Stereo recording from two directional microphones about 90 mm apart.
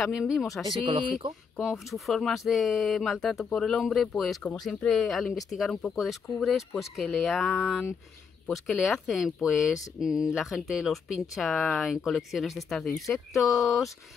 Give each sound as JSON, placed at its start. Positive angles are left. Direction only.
{"t": 0.0, "sound": "speech", "side_deg": -5}
{"t": 0.7, "sound": "speech", "side_deg": -70}
{"t": 1.6, "sound": "speech", "side_deg": -5}